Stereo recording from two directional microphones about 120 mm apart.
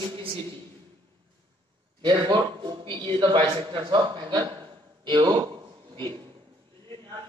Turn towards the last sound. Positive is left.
turn(degrees=-40)  # may be behind; listen again after turning